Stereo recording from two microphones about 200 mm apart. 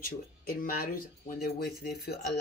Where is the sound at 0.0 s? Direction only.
45° left (ahead or behind).